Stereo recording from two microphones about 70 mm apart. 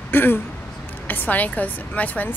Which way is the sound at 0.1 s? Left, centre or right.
Left.